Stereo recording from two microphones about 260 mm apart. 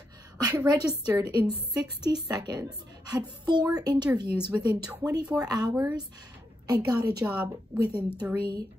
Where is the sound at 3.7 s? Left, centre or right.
Centre.